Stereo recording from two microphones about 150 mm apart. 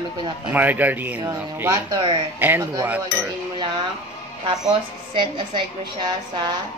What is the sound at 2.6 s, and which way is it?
Speech, 25° right (ahead or behind).